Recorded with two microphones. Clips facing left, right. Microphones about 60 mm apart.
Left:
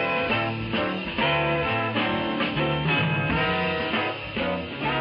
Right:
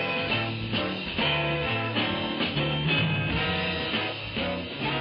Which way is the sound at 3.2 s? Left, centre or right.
Left.